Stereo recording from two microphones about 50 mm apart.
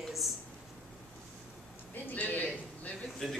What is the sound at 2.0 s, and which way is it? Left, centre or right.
Speech, left.